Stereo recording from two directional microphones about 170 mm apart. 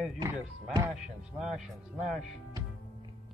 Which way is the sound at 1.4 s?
5° right (ahead or behind).